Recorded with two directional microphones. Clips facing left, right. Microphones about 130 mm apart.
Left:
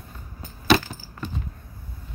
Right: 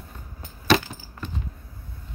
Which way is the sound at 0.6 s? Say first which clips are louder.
Left 1 dB; 5° left (ahead or behind).